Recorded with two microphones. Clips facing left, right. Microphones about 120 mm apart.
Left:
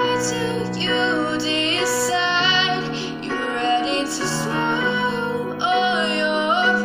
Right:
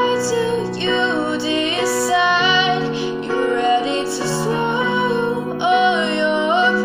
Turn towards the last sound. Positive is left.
turn(degrees=20)  # may be behind; listen again after turning